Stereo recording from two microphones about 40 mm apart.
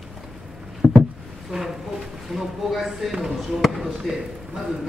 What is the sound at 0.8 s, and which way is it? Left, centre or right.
Rowboat, right.